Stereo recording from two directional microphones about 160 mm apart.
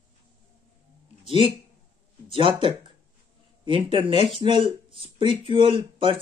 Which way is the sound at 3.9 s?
35° right (ahead or behind).